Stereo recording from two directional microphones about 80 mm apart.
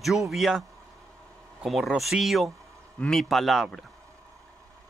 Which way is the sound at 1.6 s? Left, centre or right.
Centre.